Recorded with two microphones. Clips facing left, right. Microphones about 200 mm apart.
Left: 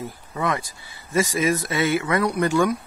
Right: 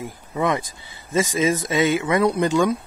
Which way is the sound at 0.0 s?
20° right (ahead or behind).